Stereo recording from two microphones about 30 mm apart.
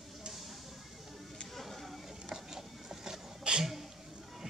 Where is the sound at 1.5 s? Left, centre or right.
Centre.